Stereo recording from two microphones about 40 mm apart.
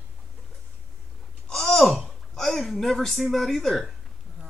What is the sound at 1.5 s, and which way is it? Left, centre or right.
A woman's voice, centre.